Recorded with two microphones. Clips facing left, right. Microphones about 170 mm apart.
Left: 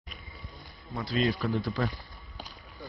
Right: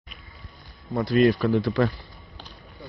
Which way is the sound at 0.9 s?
55° right (ahead or behind).